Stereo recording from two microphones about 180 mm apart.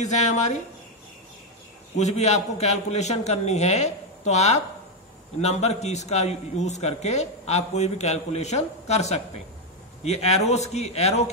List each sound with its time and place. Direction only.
0.0 s a man's voice: 40° left (ahead or behind)
2.0 s a man's voice: 40° left (ahead or behind)